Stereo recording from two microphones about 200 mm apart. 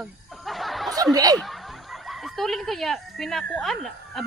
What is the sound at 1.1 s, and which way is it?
Speech, 20° right (ahead or behind).